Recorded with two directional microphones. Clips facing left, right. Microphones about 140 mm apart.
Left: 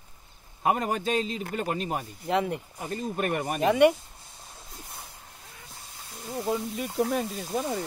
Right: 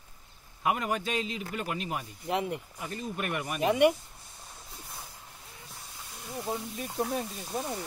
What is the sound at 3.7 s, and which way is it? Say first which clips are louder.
Speech: left 3 dB; 90° left.